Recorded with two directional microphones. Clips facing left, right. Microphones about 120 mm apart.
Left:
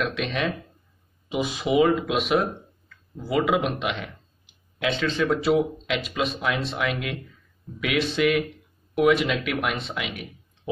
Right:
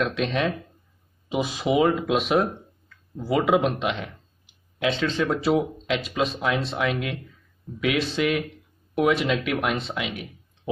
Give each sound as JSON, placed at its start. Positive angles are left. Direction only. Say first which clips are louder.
{"t": 0.0, "sound": "speech", "louder": "right 2 dB", "side_deg": -30}